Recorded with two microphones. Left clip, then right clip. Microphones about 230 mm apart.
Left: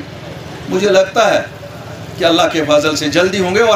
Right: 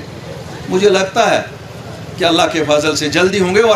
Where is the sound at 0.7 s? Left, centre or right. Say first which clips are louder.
Left 1 dB; centre.